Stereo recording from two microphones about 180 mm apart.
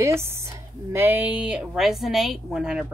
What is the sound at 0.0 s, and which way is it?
A woman's voice, 15° right (ahead or behind).